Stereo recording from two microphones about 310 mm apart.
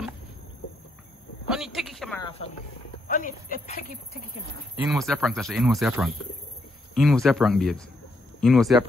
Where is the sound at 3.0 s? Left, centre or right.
Left.